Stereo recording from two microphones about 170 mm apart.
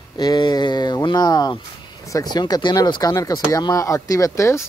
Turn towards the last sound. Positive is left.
turn(degrees=15)  # may be behind; listen again after turning